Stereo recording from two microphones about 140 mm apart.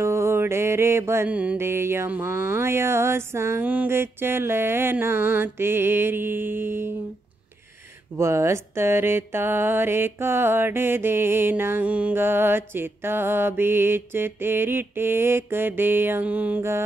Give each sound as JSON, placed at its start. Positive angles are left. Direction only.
{"t": 0.0, "sound": "mantra", "side_deg": -20}
{"t": 8.2, "sound": "mantra", "side_deg": -20}